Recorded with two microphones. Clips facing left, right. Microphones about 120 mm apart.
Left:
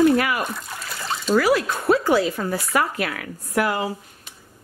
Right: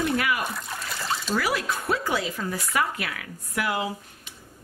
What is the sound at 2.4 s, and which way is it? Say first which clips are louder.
A woman's voice: left 4 dB; 50° left (ahead or behind).